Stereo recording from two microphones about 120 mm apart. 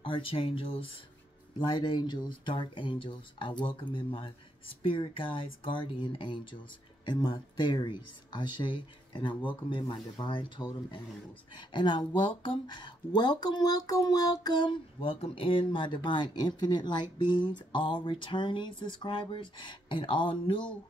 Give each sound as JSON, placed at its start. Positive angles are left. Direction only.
{"t": 0.0, "sound": "speech", "side_deg": 50}
{"t": 1.6, "sound": "speech", "side_deg": 35}